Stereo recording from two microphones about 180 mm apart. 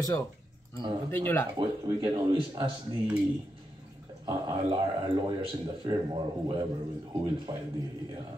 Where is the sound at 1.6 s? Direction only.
25° right (ahead or behind).